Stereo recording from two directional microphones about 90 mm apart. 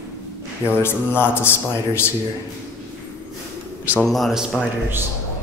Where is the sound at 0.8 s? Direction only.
25° left (ahead or behind).